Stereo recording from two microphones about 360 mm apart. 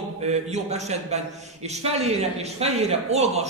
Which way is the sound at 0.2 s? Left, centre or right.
Centre.